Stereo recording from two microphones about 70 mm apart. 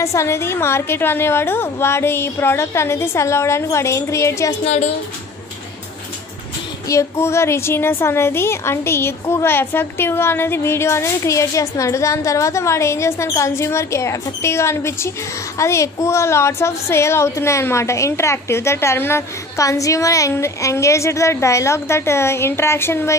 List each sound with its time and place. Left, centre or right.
0.0 s a woman's voice: left
6.9 s a woman's voice: left
19.5 s a woman's voice: left